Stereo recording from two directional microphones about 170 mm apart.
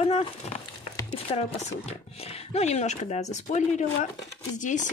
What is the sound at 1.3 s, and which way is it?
Speech, 35° left (ahead or behind).